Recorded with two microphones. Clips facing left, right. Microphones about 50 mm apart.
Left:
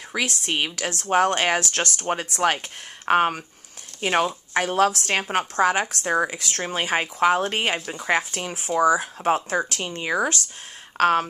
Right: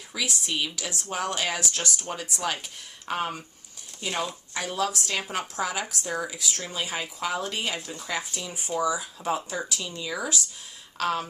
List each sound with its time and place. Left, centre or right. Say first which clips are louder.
0.1 s speech: left 5 dB; left
8.5 s speech: left 7 dB; left